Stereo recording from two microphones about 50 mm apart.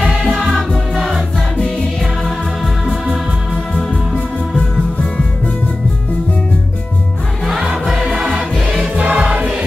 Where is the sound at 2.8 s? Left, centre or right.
Centre.